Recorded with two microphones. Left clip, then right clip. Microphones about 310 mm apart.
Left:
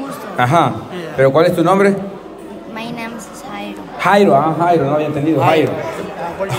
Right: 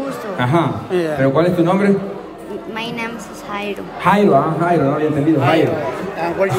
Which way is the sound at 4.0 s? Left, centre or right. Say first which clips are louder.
Left 2 dB; centre.